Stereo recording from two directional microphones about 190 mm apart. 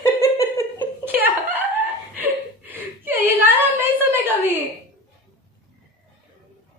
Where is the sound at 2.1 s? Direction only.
10° right (ahead or behind).